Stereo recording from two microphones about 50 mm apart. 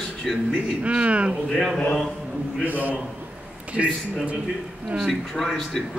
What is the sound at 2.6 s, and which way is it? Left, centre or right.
Speech, right.